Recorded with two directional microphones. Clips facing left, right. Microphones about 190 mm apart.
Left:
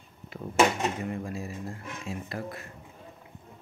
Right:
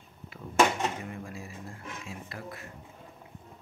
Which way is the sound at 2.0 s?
40° left (ahead or behind).